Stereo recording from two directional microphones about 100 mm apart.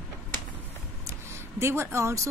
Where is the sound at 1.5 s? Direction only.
25° right (ahead or behind).